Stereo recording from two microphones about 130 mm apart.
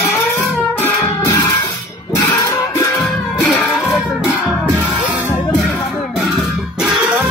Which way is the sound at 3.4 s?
5° left (ahead or behind).